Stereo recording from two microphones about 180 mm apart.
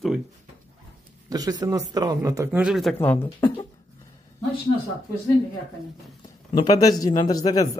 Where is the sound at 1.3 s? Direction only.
20° right (ahead or behind).